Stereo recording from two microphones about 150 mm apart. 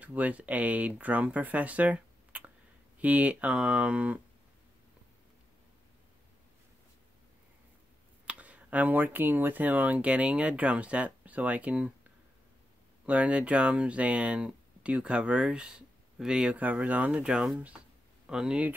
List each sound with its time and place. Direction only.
0.0 s speech: 10° right (ahead or behind)
8.3 s speech: 10° right (ahead or behind)
13.0 s speech: 10° right (ahead or behind)